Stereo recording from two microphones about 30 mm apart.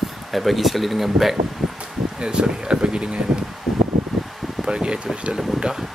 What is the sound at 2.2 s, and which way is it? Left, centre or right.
Speech, right.